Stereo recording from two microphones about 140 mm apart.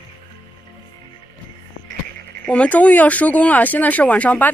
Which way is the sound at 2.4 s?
10° left (ahead or behind).